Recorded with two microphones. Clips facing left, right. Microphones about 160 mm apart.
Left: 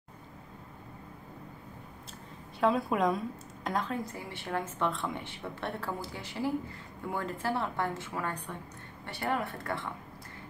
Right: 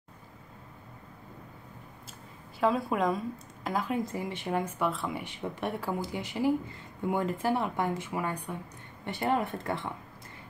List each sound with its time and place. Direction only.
2.6 s a woman's voice: centre (ahead or behind)
3.9 s a woman's voice: 20° right (ahead or behind); by 5.2 s 5° right (ahead or behind)
5.2 s a woman's voice: 15° right (ahead or behind)